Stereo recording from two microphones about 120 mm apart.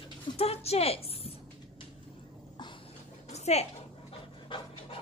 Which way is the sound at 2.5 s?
40° left (ahead or behind).